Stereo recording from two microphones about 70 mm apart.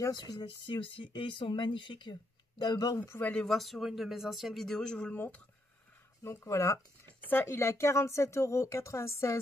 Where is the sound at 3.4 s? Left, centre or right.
Centre; by 5.4 s left.